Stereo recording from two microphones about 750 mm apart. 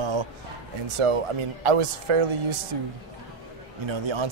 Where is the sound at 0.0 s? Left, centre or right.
Right.